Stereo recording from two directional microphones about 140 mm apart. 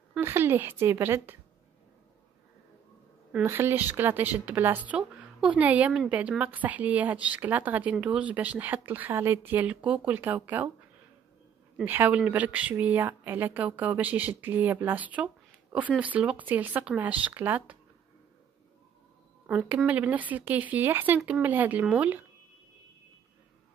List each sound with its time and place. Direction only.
0.2 s speech: 15° right (ahead or behind)
3.4 s speech: 15° right (ahead or behind)
11.7 s speech: 10° right (ahead or behind)
19.4 s speech: 10° right (ahead or behind)